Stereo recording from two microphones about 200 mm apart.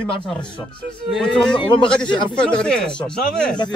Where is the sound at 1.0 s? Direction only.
Centre (ahead or behind).